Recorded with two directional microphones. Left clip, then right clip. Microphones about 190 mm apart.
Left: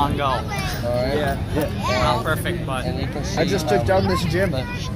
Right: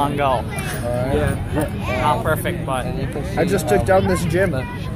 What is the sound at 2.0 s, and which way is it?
Speech, 35° right (ahead or behind).